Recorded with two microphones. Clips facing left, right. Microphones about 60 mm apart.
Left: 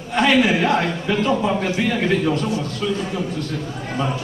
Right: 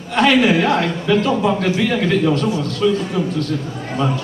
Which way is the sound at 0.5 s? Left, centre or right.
Right.